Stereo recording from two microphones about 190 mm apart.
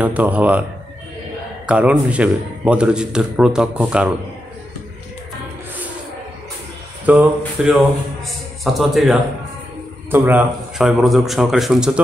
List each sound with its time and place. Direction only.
0.0 s a man's voice: 10° right (ahead or behind)
1.7 s a man's voice: 5° right (ahead or behind)
7.1 s a man's voice: 5° right (ahead or behind)